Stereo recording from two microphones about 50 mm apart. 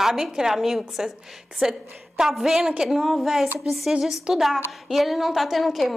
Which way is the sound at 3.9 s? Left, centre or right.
Centre.